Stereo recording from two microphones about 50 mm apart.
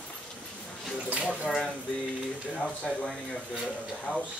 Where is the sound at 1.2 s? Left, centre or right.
Centre.